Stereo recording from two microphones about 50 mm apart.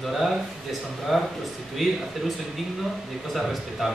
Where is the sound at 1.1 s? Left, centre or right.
Centre.